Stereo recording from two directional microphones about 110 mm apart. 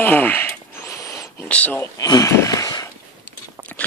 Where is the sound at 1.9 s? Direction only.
35° left (ahead or behind).